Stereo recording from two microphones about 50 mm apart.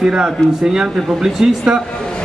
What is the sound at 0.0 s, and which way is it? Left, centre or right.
A man's voice, centre.